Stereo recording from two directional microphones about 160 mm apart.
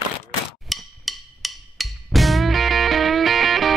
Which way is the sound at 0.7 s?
Centre (ahead or behind).